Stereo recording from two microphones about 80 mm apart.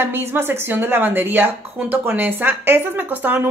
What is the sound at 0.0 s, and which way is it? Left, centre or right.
A woman's voice, right.